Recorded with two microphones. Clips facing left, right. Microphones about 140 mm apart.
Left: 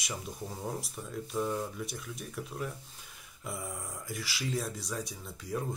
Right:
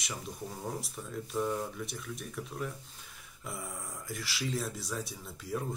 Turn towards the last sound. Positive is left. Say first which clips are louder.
# even
turn(degrees=0)  # may be behind; listen again after turning